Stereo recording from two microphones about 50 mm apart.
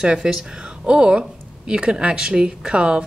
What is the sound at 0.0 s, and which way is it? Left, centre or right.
Speech, centre.